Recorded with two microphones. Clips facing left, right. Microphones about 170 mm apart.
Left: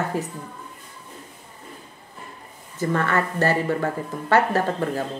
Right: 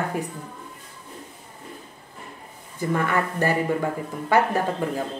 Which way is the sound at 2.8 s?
10° right (ahead or behind).